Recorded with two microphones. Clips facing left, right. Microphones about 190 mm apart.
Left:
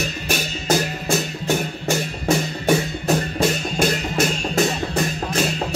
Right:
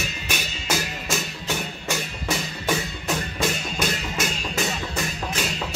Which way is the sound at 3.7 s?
50° left (ahead or behind).